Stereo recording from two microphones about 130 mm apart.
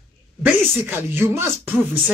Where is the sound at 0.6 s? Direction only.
15° right (ahead or behind).